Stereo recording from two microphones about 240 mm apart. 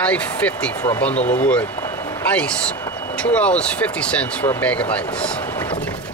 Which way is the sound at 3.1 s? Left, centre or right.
Centre.